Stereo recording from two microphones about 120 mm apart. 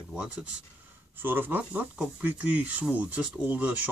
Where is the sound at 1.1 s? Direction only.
15° right (ahead or behind).